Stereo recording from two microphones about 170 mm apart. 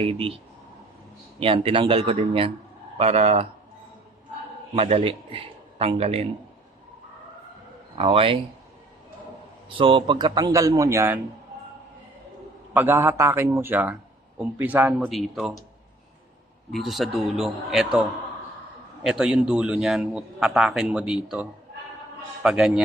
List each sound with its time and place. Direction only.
1.4 s a man's voice: 30° right (ahead or behind)
4.7 s a man's voice: 35° right (ahead or behind)
8.0 s a man's voice: 35° right (ahead or behind)
9.7 s a man's voice: 30° right (ahead or behind)
12.7 s a man's voice: 15° right (ahead or behind)
15.0 s a man's voice: centre (ahead or behind)
16.7 s a man's voice: centre (ahead or behind)
19.0 s a man's voice: 5° right (ahead or behind)